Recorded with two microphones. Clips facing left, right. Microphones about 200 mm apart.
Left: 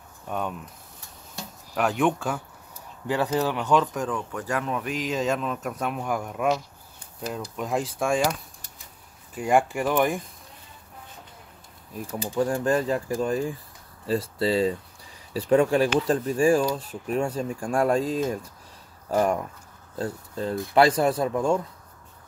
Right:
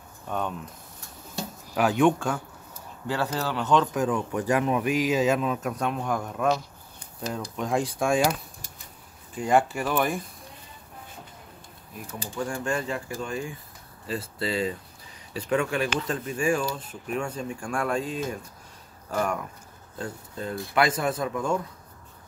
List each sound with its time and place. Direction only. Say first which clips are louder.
0.3 s speech: even; 10° left (ahead or behind)
1.8 s speech: right 2 dB; centre (ahead or behind)
3.1 s speech: left 4 dB; 15° left (ahead or behind)
3.8 s speech: right 3 dB; 5° right (ahead or behind)
4.3 s speech: right 4 dB; 15° right (ahead or behind); by 8.4 s centre (ahead or behind)
9.3 s speech: left 1 dB; 10° left (ahead or behind)
12.4 s speech: left 6 dB; 35° left (ahead or behind)